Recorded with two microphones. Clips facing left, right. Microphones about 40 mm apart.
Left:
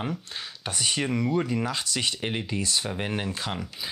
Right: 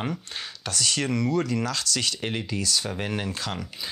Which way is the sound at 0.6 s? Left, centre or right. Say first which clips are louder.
Right 1 dB; left.